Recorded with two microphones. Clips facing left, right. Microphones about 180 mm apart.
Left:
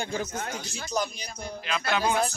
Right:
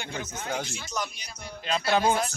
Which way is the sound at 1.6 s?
30° right (ahead or behind).